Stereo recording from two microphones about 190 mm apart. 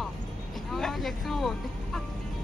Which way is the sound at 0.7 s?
Centre (ahead or behind).